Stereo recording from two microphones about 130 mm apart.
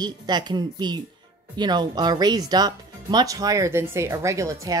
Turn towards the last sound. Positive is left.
turn(degrees=-25)  # may be behind; listen again after turning